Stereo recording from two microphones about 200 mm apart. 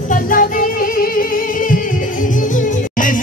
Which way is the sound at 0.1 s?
45° left (ahead or behind).